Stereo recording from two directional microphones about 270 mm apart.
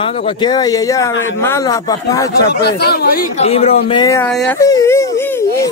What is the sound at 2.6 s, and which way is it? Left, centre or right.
Speech, left.